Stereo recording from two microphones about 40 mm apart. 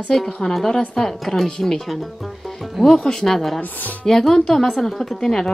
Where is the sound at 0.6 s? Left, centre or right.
Centre.